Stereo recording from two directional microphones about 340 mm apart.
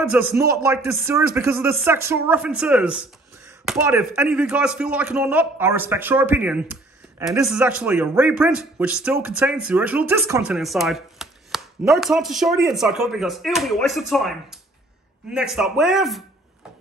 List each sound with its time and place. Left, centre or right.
0.1 s a man's voice: centre